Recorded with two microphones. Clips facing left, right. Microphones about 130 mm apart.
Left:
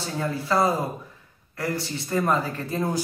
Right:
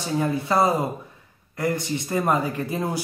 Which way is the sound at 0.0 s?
15° right (ahead or behind).